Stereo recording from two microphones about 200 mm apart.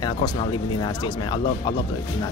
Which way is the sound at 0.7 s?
20° left (ahead or behind).